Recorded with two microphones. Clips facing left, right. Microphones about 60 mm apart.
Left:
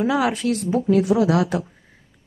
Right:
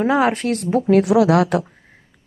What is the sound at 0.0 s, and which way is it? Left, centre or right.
Speech, right.